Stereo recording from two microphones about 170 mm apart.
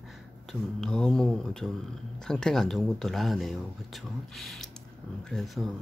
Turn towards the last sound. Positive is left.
turn(degrees=0)  # may be behind; listen again after turning